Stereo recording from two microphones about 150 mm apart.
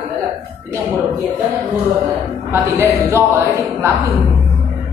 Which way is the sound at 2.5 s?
20° right (ahead or behind).